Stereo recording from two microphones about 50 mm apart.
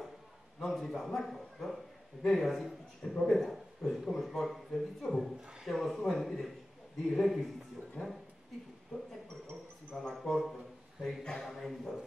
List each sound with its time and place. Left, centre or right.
0.6 s speech: centre
5.4 s speech: centre
5.7 s speech: centre
8.9 s a man's voice: left
9.8 s speech: centre